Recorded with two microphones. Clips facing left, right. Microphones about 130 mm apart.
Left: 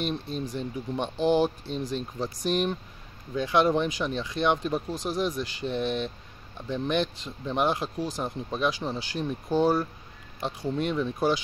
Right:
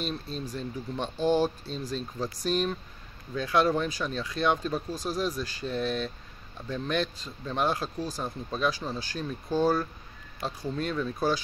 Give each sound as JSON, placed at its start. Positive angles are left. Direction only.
{"t": 0.1, "sound": "speech", "side_deg": 15}